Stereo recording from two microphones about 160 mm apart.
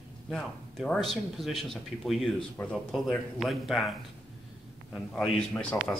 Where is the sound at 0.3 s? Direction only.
Centre (ahead or behind).